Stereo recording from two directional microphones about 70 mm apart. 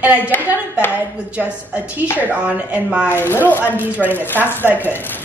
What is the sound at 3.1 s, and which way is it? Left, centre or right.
Speech, left.